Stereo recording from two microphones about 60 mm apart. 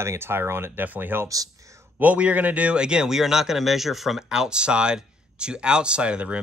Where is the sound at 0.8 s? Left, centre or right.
Right.